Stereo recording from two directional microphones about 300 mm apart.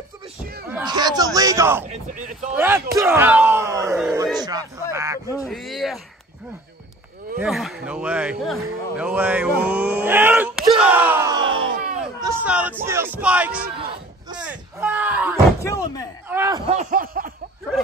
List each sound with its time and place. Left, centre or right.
0.4 s a sound: right
0.7 s speech: centre
2.1 s a sound: right
2.5 s a sound: centre
5.4 s speech: centre
7.3 s speech: centre
14.4 s door: centre
15.6 s speech: centre
16.3 s speech: centre; by 17.3 s right